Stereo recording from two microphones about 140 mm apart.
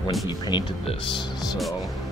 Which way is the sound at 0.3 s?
30° left (ahead or behind).